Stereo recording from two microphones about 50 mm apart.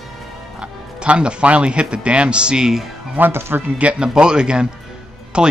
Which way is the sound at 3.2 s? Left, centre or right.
Right.